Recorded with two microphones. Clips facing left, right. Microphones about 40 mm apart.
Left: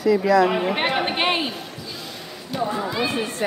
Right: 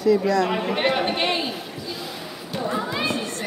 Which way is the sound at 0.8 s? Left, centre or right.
Centre.